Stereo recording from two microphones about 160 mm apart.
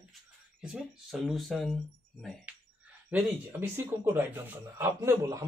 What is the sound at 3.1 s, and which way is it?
A man's voice, 10° right (ahead or behind).